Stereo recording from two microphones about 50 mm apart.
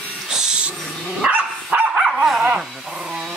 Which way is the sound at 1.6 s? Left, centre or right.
Right.